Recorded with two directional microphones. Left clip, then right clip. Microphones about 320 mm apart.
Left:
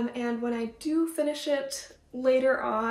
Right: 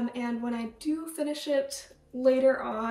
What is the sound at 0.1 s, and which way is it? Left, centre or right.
A woman's voice, centre.